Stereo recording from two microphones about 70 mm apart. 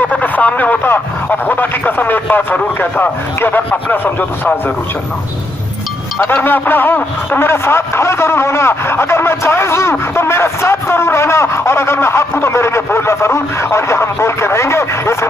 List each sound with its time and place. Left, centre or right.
0.1 s speech: left
6.2 s a man's voice: left